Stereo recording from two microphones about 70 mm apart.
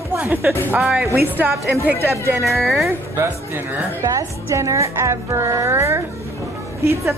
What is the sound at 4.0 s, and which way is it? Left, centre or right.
Speech, right.